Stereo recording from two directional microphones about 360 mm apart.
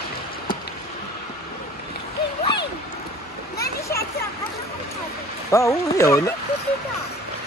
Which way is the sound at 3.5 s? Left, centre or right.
Centre.